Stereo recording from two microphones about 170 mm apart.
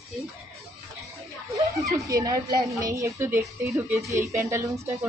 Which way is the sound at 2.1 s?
20° right (ahead or behind).